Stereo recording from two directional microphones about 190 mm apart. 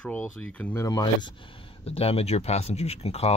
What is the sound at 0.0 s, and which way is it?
Speech, 5° left (ahead or behind).